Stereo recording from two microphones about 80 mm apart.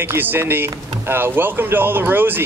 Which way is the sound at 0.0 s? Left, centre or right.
Right.